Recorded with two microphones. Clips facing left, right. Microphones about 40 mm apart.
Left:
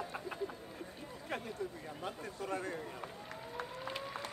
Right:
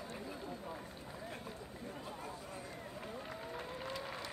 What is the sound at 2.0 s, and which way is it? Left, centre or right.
Chatter, left.